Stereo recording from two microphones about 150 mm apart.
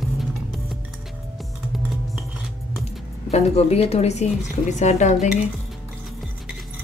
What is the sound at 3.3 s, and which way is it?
Speech, 45° left (ahead or behind).